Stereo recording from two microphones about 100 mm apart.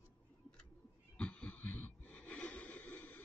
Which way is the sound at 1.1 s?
10° left (ahead or behind).